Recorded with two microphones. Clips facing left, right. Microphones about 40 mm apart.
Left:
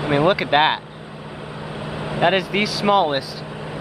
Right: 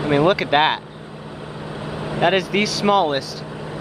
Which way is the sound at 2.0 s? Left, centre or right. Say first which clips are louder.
Even; centre.